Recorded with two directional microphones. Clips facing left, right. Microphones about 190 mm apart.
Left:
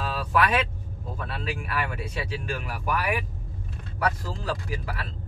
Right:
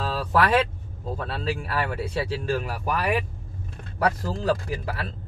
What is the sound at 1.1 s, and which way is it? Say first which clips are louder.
Speech: right 4 dB; 35° right (ahead or behind).